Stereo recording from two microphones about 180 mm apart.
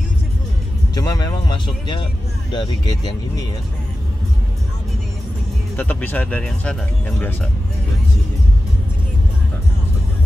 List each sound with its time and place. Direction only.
0.9 s speech: 20° left (ahead or behind)
5.8 s speech: 10° left (ahead or behind)